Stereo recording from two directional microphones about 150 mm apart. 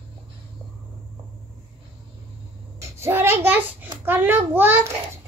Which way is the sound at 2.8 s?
15° right (ahead or behind).